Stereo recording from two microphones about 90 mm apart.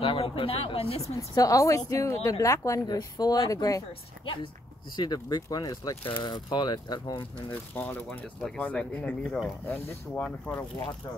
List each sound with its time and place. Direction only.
0.0 s speech: 80° left
1.1 s speech: 40° left (ahead or behind)
4.9 s speech: 55° left (ahead or behind)
6.0 s speech: 60° left (ahead or behind)
7.4 s speech: 25° left (ahead or behind)
8.4 s speech: 5° left (ahead or behind)